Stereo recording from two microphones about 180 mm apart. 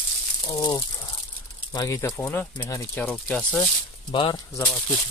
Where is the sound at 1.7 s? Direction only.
20° left (ahead or behind).